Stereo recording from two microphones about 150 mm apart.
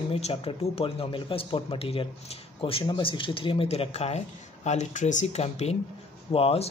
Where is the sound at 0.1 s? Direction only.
40° left (ahead or behind).